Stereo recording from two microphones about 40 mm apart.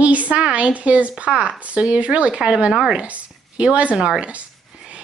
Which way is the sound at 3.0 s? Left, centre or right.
Right.